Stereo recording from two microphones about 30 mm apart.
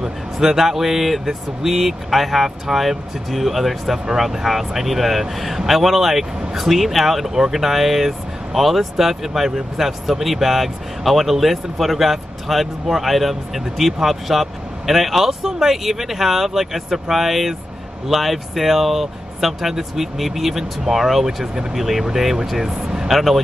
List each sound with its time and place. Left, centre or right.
0.0 s speech: centre
22.8 s vehicle: centre
23.1 s speech: centre